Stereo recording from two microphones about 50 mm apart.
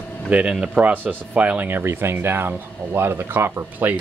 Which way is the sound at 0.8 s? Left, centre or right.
Right.